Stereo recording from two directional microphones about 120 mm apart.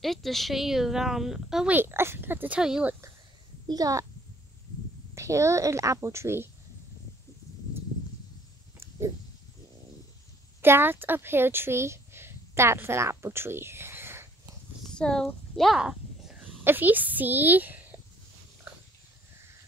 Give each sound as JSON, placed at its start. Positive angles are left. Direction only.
{"t": 0.0, "sound": "speech", "side_deg": 0}
{"t": 1.7, "sound": "speech", "side_deg": -20}
{"t": 3.6, "sound": "a child's voice", "side_deg": -30}
{"t": 5.1, "sound": "speech", "side_deg": -25}
{"t": 10.6, "sound": "a woman's voice", "side_deg": -20}
{"t": 14.8, "sound": "a sound", "side_deg": 5}
{"t": 16.6, "sound": "speech", "side_deg": -15}